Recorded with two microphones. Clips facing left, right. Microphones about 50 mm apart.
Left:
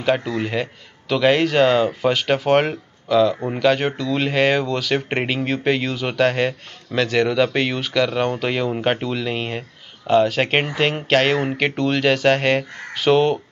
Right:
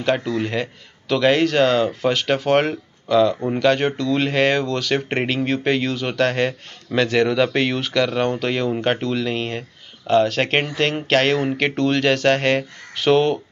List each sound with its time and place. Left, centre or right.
0.0 s a man's voice: centre